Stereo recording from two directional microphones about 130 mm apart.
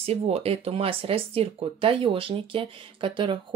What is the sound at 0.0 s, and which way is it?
Speech, 50° right (ahead or behind).